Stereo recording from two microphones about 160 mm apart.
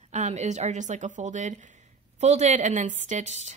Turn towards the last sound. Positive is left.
turn(degrees=-45)  # may be behind; listen again after turning